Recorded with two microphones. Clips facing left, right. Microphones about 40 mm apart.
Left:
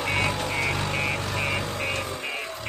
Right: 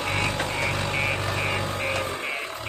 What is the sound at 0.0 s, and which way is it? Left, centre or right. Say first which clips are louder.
Vehicle: even; centre.